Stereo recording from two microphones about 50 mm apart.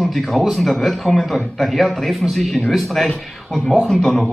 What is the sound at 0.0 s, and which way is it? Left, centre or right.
Speech, centre.